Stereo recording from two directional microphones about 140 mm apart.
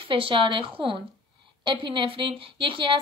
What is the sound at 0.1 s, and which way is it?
A woman's voice, 40° right (ahead or behind).